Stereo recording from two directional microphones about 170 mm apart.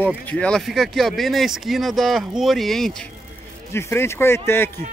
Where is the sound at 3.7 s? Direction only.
15° left (ahead or behind).